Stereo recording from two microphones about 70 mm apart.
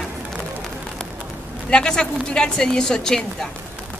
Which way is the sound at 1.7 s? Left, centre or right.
Centre.